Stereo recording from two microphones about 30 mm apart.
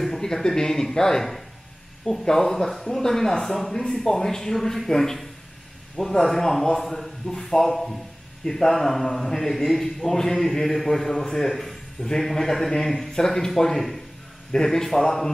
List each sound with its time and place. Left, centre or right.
0.2 s speech: centre
13.1 s speech: centre